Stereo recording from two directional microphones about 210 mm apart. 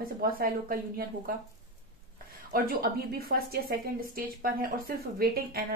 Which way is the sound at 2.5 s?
45° right (ahead or behind).